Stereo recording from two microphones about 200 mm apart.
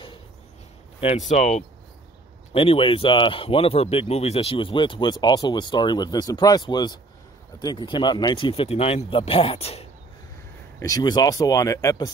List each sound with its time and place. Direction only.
1.3 s speech: 35° left (ahead or behind)
10.8 s speech: 20° left (ahead or behind)